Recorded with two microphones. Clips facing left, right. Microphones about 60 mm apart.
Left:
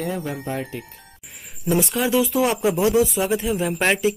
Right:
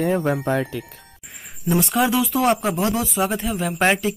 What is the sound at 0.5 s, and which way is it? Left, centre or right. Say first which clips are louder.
Speech: right 6 dB; right.